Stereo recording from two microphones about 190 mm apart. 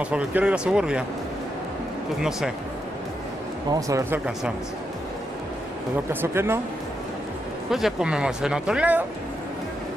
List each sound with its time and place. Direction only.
0.0 s speech: 5° right (ahead or behind)
3.7 s speech: 15° right (ahead or behind)
6.2 s speech: 10° right (ahead or behind)
7.7 s speech: 5° right (ahead or behind)